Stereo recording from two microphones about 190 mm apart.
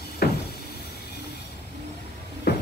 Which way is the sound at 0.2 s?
55° left (ahead or behind).